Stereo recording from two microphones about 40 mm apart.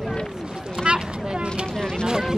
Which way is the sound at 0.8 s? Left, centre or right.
Right.